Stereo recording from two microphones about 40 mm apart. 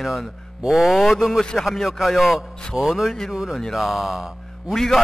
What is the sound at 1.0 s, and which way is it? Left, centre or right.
Speech, centre.